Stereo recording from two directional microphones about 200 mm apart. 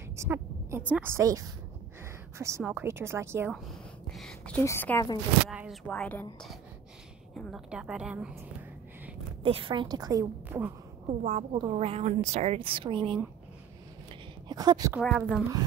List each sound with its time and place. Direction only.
0.1 s a sound: 15° right (ahead or behind)
0.9 s a woman's voice: 10° right (ahead or behind)
3.6 s speech: centre (ahead or behind); by 5.2 s 15° left (ahead or behind)
5.5 s speech: 5° right (ahead or behind)
5.9 s a woman's voice: 5° left (ahead or behind)
7.3 s a woman's voice: centre (ahead or behind)
9.4 s a woman's voice: 25° right (ahead or behind)
11.1 s a woman's voice: 35° right (ahead or behind)
14.5 s a woman's voice: 20° right (ahead or behind)
15.0 s a woman's voice: centre (ahead or behind)